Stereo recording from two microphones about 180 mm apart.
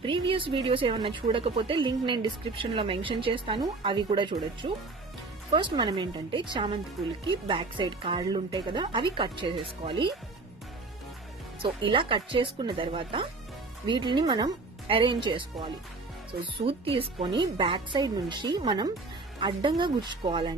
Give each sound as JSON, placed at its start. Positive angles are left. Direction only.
{"t": 0.0, "sound": "a woman's voice", "side_deg": -30}
{"t": 11.6, "sound": "a woman's voice", "side_deg": -30}